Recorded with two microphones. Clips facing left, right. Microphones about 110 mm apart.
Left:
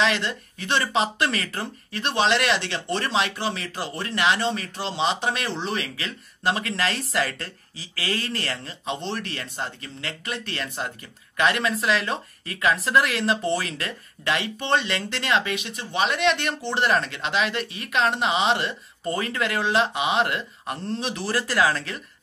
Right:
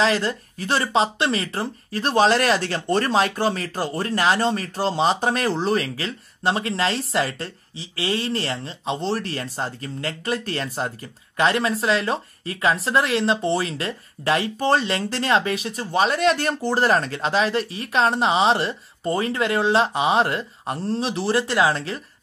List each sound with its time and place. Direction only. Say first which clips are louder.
0.0 s speech: right 3 dB; 35° right (ahead or behind)